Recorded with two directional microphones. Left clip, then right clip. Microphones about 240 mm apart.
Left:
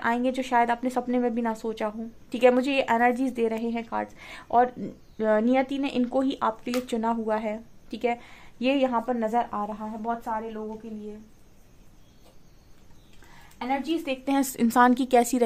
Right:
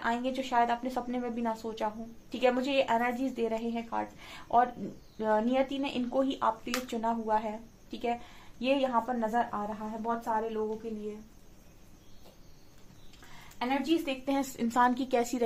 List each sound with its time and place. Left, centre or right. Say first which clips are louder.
0.0 s a woman's voice: left 6 dB; left
13.6 s a woman's voice: left 2 dB; left